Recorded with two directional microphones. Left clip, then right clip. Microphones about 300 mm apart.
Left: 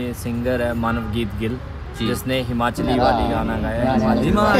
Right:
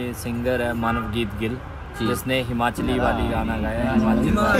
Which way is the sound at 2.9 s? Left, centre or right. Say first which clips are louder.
Left 7 dB; left.